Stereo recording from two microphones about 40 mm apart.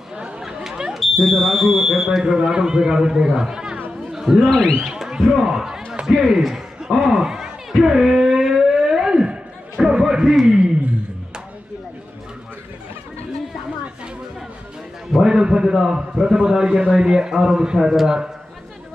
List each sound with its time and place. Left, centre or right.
0.7 s smoke detector: centre
0.9 s speech: centre
2.3 s a man's voice: right
3.9 s chatter: centre
4.4 s speech: left
4.9 s a sound: centre
5.3 s a man's voice: centre
6.0 s a sound: right
6.4 s a man's voice: centre
7.2 s a sound: centre
7.9 s a sound: centre
10.4 s speech: centre
15.1 s a man's voice: centre